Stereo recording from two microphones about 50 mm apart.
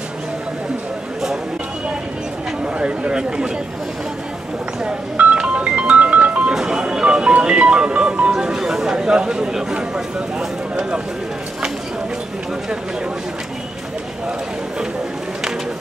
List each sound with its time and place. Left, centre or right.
2.6 s speech: right
5.1 s telephone dialing: right
5.4 s music: right